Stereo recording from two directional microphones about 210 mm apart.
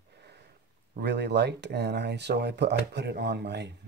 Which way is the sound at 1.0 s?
55° right (ahead or behind).